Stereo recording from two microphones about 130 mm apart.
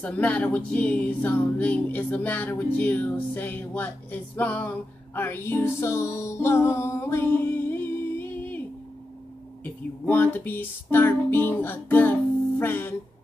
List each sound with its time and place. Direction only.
0.0 s music: 10° left (ahead or behind)
10.0 s music: 15° left (ahead or behind)